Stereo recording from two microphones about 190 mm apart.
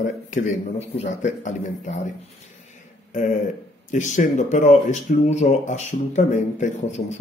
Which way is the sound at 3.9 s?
40° left (ahead or behind).